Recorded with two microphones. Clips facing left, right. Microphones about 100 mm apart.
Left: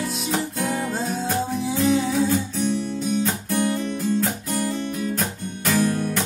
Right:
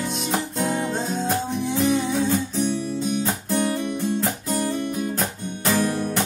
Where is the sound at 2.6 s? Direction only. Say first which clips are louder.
Left 1 dB; 15° right (ahead or behind).